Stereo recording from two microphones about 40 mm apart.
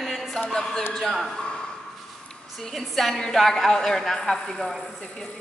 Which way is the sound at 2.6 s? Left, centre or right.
Centre.